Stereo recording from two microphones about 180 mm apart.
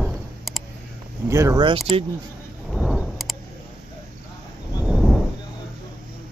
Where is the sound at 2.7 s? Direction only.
Centre (ahead or behind).